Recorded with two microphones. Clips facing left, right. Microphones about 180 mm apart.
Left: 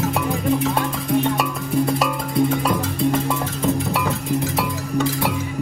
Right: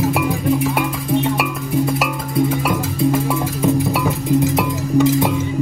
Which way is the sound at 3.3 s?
15° right (ahead or behind).